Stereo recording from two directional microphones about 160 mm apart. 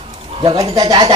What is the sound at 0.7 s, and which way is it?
Speech, 25° right (ahead or behind).